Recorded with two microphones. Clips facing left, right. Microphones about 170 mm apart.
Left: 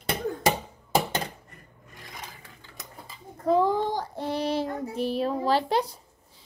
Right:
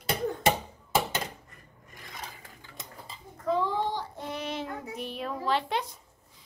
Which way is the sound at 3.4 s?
40° left (ahead or behind).